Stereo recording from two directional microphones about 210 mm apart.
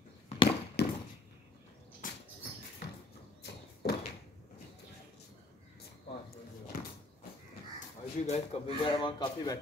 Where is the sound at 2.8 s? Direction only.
55° left (ahead or behind).